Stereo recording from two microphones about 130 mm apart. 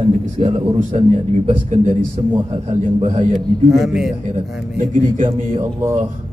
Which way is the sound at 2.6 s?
70° right (ahead or behind).